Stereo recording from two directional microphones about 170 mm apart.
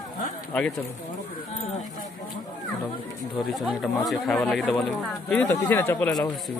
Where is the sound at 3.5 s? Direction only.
Centre (ahead or behind).